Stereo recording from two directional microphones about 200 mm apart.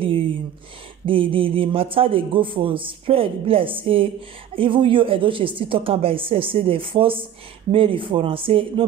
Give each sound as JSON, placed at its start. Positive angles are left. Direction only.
{"t": 1.0, "sound": "a man's voice", "side_deg": -25}